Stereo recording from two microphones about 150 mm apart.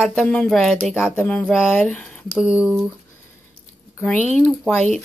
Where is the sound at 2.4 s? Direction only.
10° right (ahead or behind).